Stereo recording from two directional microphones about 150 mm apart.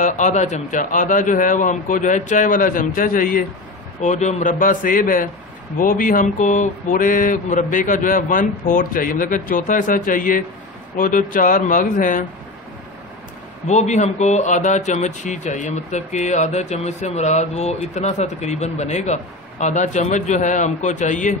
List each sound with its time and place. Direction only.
0.0 s mantra: 55° left (ahead or behind)
4.0 s mantra: 50° left (ahead or behind)
13.7 s speech: 50° left (ahead or behind)